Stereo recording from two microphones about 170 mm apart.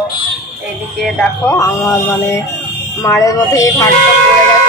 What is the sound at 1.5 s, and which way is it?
Speech, 20° left (ahead or behind).